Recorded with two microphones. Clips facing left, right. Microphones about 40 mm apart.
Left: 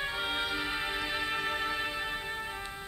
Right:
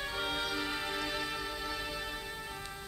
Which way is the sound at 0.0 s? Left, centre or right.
Left.